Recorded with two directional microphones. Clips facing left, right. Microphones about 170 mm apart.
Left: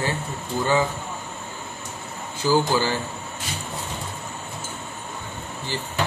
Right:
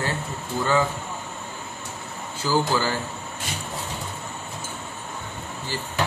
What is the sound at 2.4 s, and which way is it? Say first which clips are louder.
Speech: left 2 dB; 15° left (ahead or behind).